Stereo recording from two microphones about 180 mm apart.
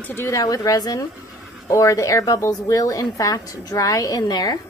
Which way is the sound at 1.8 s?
15° left (ahead or behind).